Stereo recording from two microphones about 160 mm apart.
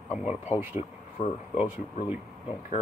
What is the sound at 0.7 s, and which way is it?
Speech, 40° left (ahead or behind).